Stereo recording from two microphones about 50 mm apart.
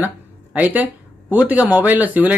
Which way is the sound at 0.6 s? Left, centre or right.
Right.